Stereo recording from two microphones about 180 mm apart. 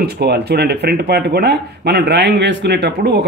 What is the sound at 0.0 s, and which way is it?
Speech, 65° right (ahead or behind).